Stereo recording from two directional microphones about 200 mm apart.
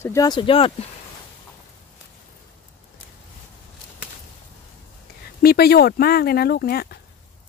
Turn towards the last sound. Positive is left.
turn(degrees=50)  # may be behind; listen again after turning